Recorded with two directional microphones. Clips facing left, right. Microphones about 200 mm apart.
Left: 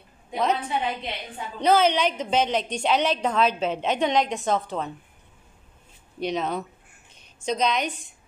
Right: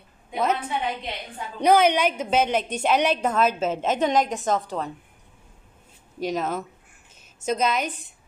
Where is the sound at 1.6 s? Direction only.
15° right (ahead or behind).